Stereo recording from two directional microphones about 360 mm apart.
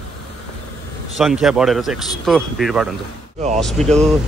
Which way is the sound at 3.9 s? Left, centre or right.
Centre.